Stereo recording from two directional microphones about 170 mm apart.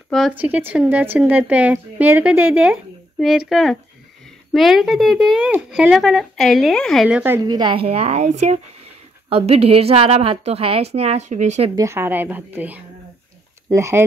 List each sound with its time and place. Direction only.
0.3 s a woman's voice: 10° right (ahead or behind)
7.4 s a woman's voice: 25° right (ahead or behind); by 11.7 s 40° right (ahead or behind)
11.7 s a woman's voice: 15° right (ahead or behind)